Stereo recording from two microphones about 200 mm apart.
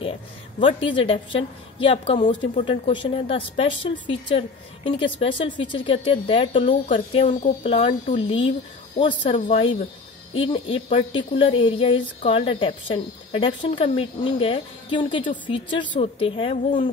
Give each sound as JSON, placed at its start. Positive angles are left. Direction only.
{"t": 0.6, "sound": "speech", "side_deg": 25}